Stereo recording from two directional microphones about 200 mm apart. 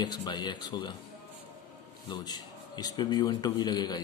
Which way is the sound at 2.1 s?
20° left (ahead or behind).